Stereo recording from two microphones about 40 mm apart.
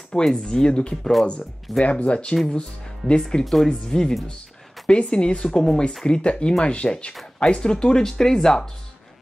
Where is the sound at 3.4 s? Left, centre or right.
Centre.